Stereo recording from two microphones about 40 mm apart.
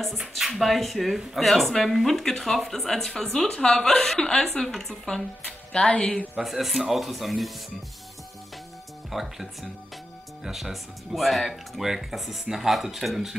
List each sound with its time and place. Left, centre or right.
0.6 s speech: centre
5.7 s speech: left
6.4 s speech: centre
9.1 s speech: centre